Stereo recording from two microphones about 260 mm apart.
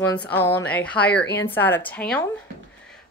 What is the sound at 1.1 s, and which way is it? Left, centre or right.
Speech, left.